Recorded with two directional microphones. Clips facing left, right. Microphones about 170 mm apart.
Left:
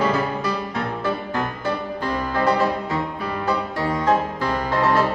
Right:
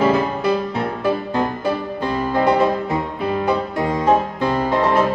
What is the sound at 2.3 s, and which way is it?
Music, 25° right (ahead or behind).